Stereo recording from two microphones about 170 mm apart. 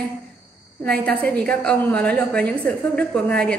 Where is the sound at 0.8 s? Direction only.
5° left (ahead or behind).